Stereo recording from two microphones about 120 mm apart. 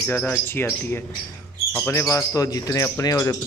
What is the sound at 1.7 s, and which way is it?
Speech, 20° left (ahead or behind).